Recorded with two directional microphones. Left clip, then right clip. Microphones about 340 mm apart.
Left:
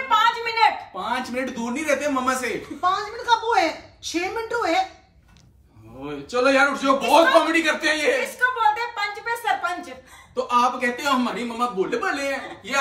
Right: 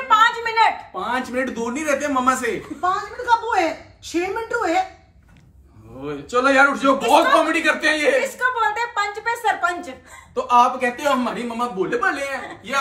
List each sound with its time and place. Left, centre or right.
0.1 s a woman's voice: centre
6.0 s a man's voice: centre